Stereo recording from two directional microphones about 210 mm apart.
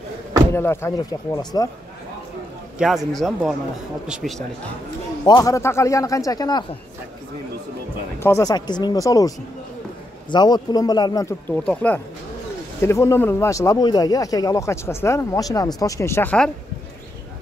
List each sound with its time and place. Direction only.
0.5 s speech: 10° left (ahead or behind)
2.8 s a man's voice: centre (ahead or behind)
5.2 s speech: 20° left (ahead or behind)
8.2 s speech: 15° left (ahead or behind)
10.3 s speech: 20° left (ahead or behind)